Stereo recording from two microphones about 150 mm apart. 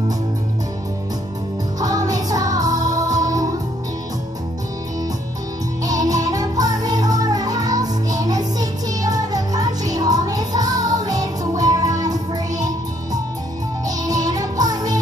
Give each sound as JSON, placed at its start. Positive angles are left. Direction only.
{"t": 1.8, "sound": "music", "side_deg": -25}
{"t": 5.9, "sound": "music", "side_deg": -25}